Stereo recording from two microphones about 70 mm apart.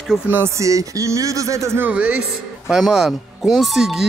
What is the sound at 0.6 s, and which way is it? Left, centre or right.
Speech, right.